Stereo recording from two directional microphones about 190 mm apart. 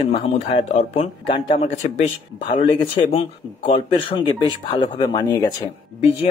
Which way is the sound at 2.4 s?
30° left (ahead or behind).